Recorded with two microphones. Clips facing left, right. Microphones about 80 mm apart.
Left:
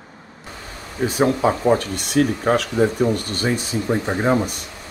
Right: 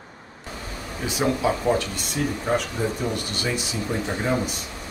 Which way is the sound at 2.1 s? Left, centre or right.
Left.